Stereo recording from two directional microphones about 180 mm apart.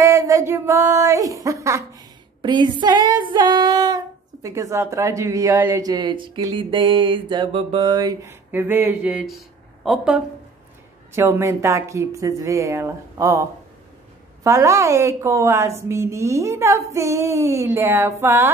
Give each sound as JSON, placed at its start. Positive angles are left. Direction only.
{"t": 0.0, "sound": "speech", "side_deg": -15}
{"t": 11.1, "sound": "speech", "side_deg": -15}